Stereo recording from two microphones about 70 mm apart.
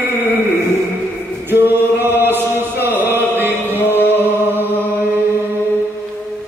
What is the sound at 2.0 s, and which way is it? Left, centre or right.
Chant, right.